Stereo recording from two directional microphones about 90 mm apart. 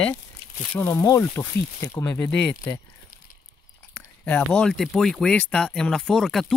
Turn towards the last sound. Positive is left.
turn(degrees=5)  # may be behind; listen again after turning